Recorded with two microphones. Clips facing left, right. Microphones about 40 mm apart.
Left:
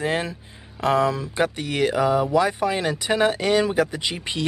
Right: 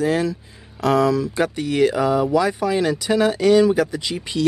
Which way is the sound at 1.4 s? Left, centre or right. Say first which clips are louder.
Right 3 dB; centre.